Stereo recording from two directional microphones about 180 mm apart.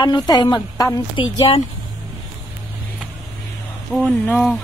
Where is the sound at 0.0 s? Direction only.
25° left (ahead or behind).